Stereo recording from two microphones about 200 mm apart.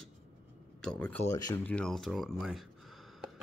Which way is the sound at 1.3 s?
20° left (ahead or behind).